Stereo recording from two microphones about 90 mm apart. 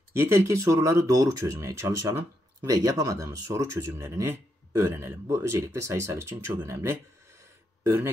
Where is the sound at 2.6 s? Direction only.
45° right (ahead or behind).